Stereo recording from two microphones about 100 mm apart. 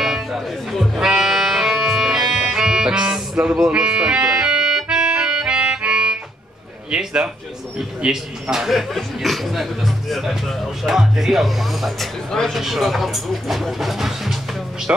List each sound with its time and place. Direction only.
0.0 s music: centre (ahead or behind)
6.9 s a man's voice: 10° right (ahead or behind)
14.9 s speech: 20° right (ahead or behind)